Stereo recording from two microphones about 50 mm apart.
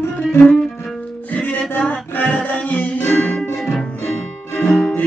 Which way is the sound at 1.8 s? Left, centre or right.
Left.